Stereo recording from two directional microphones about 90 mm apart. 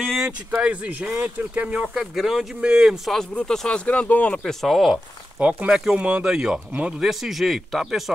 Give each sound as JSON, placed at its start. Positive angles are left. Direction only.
{"t": 0.0, "sound": "a sound", "side_deg": 5}
{"t": 0.5, "sound": "speech", "side_deg": -15}
{"t": 2.0, "sound": "speech", "side_deg": -5}
{"t": 3.1, "sound": "speech", "side_deg": 5}
{"t": 5.4, "sound": "speech", "side_deg": -15}